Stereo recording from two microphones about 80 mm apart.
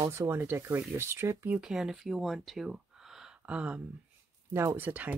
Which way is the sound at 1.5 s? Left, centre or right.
Centre.